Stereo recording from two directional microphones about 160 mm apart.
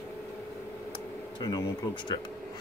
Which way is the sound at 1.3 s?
25° left (ahead or behind).